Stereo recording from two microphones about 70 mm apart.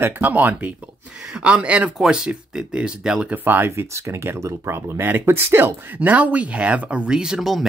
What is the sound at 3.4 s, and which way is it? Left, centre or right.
Speech, right.